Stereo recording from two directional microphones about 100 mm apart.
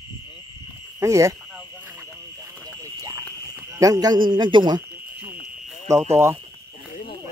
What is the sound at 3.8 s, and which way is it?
A man's voice, 40° right (ahead or behind).